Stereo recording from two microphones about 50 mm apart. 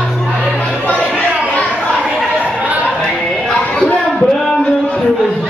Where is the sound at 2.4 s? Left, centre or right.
Right.